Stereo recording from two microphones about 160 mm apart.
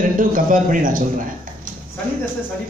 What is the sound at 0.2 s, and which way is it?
Speech, 55° right (ahead or behind).